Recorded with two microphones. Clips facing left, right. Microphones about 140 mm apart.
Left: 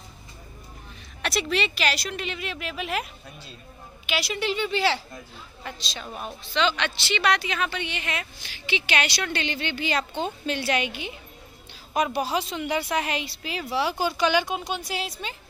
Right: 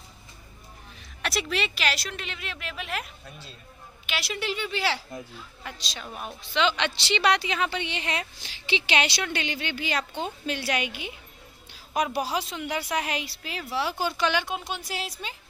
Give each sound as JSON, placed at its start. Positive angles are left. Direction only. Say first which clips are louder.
{"t": 1.2, "sound": "speech", "louder": "left 3 dB", "side_deg": 0}
{"t": 6.5, "sound": "a woman's voice", "louder": "even", "side_deg": -20}
{"t": 9.2, "sound": "speech", "louder": "left 2 dB", "side_deg": -10}